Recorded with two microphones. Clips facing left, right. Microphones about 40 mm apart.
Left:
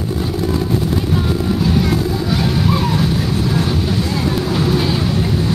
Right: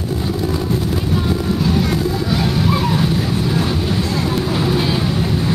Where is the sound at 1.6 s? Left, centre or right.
Centre.